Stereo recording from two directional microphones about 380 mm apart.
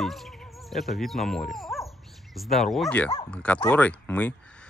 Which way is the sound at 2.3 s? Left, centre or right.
Centre.